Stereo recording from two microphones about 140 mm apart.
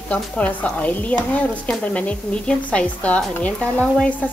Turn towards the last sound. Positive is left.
turn(degrees=10)  # may be behind; listen again after turning